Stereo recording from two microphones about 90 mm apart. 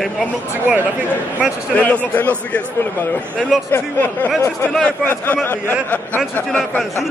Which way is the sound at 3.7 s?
20° left (ahead or behind).